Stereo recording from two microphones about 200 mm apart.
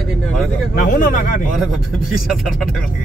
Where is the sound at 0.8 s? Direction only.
40° left (ahead or behind).